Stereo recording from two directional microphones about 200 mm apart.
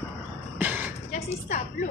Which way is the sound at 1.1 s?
35° left (ahead or behind).